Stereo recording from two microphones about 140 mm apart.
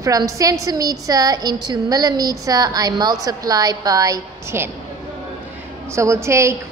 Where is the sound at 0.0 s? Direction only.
25° right (ahead or behind).